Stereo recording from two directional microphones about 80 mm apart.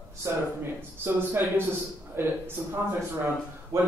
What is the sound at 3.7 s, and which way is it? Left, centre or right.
Speech, right.